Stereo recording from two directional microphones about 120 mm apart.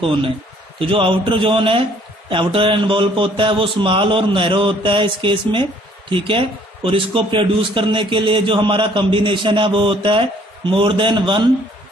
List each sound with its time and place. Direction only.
0.0 s a man's voice: 50° right (ahead or behind)